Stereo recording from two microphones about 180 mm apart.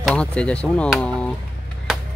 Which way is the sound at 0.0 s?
5° left (ahead or behind).